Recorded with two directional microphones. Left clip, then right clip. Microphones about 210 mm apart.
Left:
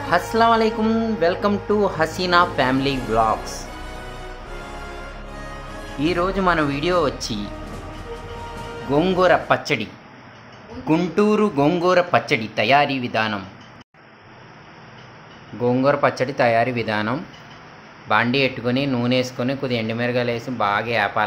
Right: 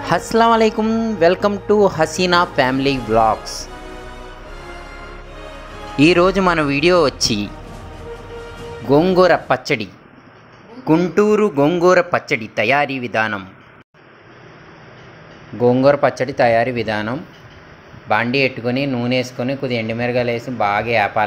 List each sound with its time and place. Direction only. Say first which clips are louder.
0.0 s speech: right 3 dB; 25° right (ahead or behind)
0.7 s speech: right 3 dB; 15° right (ahead or behind)
5.9 s speech: right 8 dB; 25° right (ahead or behind)
7.2 s speech: right 9 dB; 60° right (ahead or behind)
9.0 s speech: right 1 dB; 20° right (ahead or behind)
10.9 s speech: right 4 dB; 15° right (ahead or behind)
11.8 s speech: right 4 dB; 20° right (ahead or behind)
15.6 s speech: right 5 dB; 15° right (ahead or behind)